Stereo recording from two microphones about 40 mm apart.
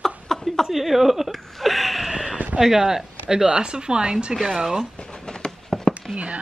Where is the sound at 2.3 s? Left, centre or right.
Right.